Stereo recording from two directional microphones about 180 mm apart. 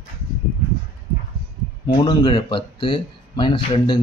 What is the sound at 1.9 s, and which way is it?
Speech, 25° left (ahead or behind).